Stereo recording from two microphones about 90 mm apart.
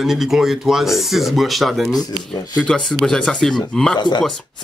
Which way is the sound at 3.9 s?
55° left (ahead or behind).